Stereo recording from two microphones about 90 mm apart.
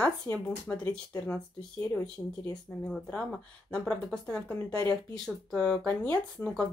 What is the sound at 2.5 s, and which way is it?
Speech, 5° left (ahead or behind).